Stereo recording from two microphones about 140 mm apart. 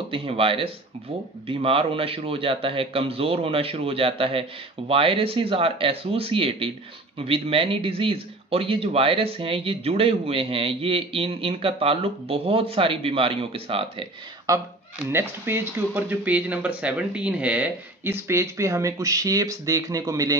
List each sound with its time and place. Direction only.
0.1 s speech: 40° right (ahead or behind)
14.5 s speech: 25° right (ahead or behind)